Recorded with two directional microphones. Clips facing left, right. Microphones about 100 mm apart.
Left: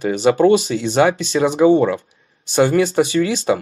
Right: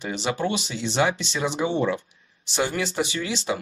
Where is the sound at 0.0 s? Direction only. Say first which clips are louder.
Left 12 dB; 50° left (ahead or behind).